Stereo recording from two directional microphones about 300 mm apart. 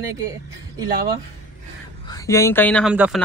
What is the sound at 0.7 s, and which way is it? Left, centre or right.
Speech, centre.